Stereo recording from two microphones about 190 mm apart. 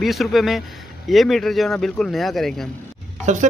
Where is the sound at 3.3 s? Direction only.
40° right (ahead or behind).